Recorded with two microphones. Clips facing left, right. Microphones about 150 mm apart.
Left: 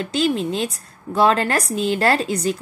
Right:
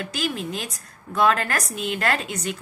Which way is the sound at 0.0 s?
30° left (ahead or behind).